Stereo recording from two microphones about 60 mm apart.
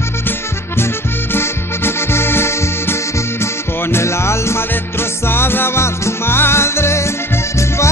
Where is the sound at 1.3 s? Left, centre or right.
Left.